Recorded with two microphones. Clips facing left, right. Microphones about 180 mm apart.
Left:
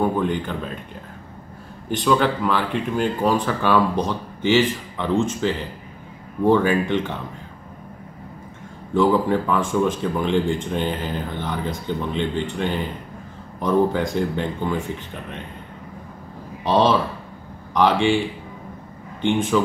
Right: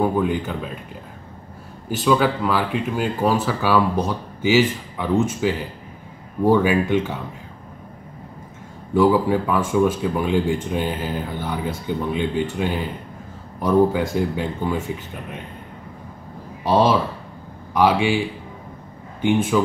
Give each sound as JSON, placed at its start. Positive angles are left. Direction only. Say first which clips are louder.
{"t": 0.0, "sound": "speech", "louder": "right 1 dB", "side_deg": -5}
{"t": 1.9, "sound": "speech", "louder": "right 1 dB", "side_deg": -5}
{"t": 8.9, "sound": "speech", "louder": "right 1 dB", "side_deg": -10}
{"t": 16.6, "sound": "speech", "louder": "right 1 dB", "side_deg": -10}
{"t": 19.2, "sound": "speech", "louder": "right 1 dB", "side_deg": -10}